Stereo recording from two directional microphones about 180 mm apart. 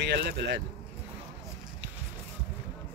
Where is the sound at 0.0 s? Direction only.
75° right (ahead or behind).